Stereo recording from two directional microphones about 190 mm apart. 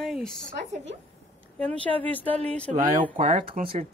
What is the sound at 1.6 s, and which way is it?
Speech, 10° left (ahead or behind).